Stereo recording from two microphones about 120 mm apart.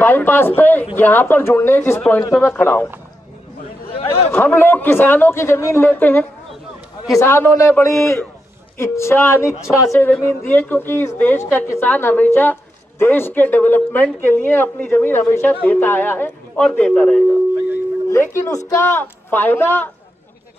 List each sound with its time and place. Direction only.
0.0 s a woman's voice: 15° left (ahead or behind)
3.9 s speech: 55° left (ahead or behind)
4.3 s a woman's voice: 15° left (ahead or behind)
10.5 s a woman's voice: 15° left (ahead or behind)
18.1 s a man's voice: 20° left (ahead or behind)